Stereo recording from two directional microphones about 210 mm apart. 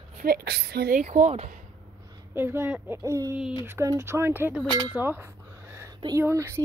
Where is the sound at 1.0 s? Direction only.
35° right (ahead or behind).